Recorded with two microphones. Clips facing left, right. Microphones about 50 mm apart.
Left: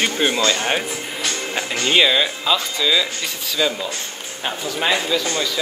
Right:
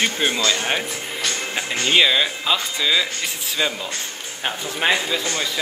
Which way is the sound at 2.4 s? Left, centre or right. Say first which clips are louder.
Left 2 dB; centre.